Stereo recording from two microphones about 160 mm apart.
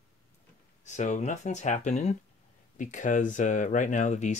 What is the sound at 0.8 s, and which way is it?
Speech, 50° left (ahead or behind).